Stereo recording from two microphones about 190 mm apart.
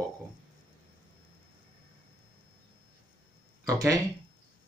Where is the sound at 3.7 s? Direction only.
20° right (ahead or behind).